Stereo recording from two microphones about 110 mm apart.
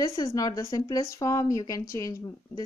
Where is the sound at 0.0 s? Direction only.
35° left (ahead or behind).